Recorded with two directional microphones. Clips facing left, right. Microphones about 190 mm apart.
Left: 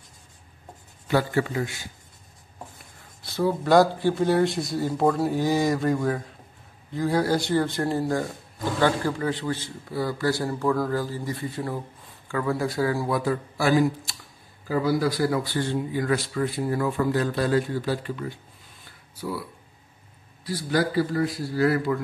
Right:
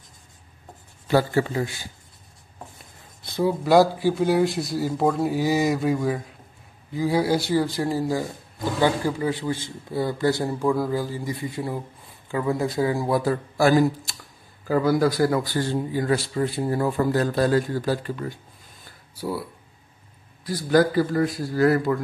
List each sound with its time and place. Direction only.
1.0 s a man's voice: 30° right (ahead or behind)
3.3 s a man's voice: 15° right (ahead or behind)
9.9 s a man's voice: 25° right (ahead or behind)
13.2 s a man's voice: 40° right (ahead or behind)
20.4 s a man's voice: 45° right (ahead or behind)